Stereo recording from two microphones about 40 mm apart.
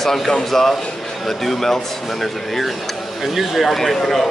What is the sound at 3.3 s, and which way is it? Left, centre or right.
Speech, centre.